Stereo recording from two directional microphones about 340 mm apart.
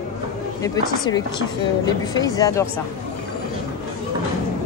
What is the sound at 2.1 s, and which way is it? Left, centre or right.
Speech, centre.